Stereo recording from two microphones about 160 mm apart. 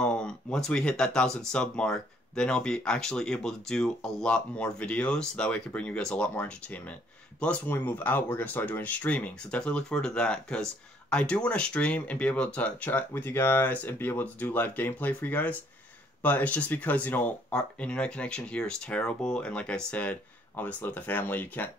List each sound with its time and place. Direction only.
0.0 s speech: 5° left (ahead or behind)